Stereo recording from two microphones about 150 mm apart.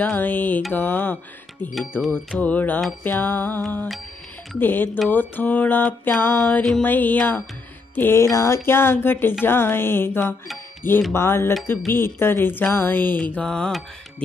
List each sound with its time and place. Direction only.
0.0 s mantra: 10° left (ahead or behind)
3.6 s music: 5° left (ahead or behind)
4.6 s mantra: 15° left (ahead or behind)